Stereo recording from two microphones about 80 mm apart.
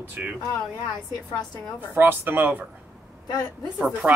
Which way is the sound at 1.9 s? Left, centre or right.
Right.